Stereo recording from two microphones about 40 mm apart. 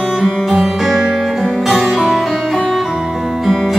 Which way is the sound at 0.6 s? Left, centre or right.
Centre.